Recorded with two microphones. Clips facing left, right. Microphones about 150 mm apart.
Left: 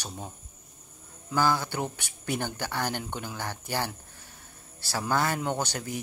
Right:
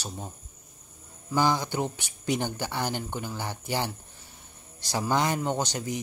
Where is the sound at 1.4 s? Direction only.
15° right (ahead or behind).